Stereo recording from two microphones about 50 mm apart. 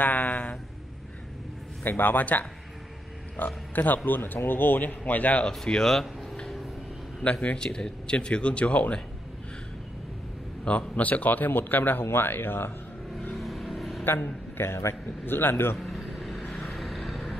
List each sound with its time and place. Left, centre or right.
0.0 s speech: left
1.9 s speech: left
5.7 s speech: centre
7.4 s speech: centre
10.6 s speech: centre
11.0 s speech: left
13.4 s vehicle: centre
14.0 s a man's voice: left
15.8 s vehicle: centre